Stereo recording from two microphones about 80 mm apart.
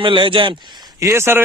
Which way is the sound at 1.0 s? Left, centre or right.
Right.